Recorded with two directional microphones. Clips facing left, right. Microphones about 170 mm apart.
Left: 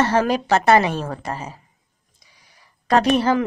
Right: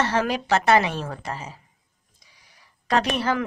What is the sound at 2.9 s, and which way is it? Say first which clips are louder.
Speech: left 6 dB; 35° left (ahead or behind).